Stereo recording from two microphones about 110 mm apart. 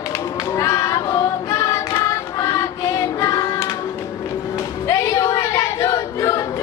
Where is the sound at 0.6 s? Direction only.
30° left (ahead or behind).